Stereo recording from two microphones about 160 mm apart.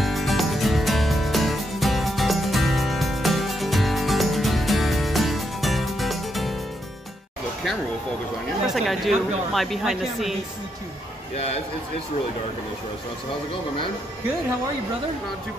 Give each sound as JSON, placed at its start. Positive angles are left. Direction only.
{"t": 0.0, "sound": "music", "side_deg": 0}
{"t": 8.6, "sound": "a woman's voice", "side_deg": 0}
{"t": 11.3, "sound": "speech", "side_deg": 40}